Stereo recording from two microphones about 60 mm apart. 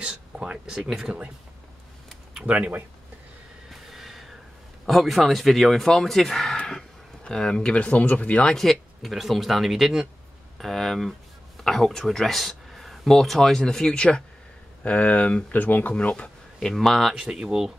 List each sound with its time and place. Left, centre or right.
0.0 s speech: centre
2.4 s speech: right
3.7 s a sound: centre
4.8 s speech: centre
6.5 s a sound: centre
7.2 s speech: centre
8.5 s speech: centre; by 15.9 s left
15.9 s speech: centre
16.5 s speech: centre
17.1 s speech: centre